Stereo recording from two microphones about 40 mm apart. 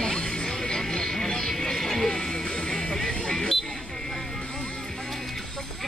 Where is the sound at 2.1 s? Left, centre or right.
Centre.